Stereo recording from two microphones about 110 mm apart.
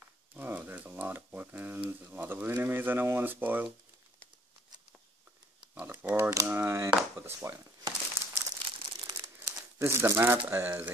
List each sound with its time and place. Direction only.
0.4 s a sound: 15° right (ahead or behind)
6.0 s cap gun: 20° right (ahead or behind)
7.2 s a sound: 25° right (ahead or behind)
8.1 s crumpling: 25° right (ahead or behind)
8.6 s crumpling: 50° right (ahead or behind)
9.2 s speech: 30° right (ahead or behind)